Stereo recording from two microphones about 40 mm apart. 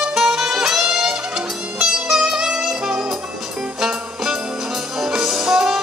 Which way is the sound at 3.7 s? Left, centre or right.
Centre.